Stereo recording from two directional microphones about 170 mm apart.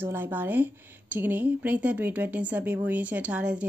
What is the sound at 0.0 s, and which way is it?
Speech, 10° right (ahead or behind).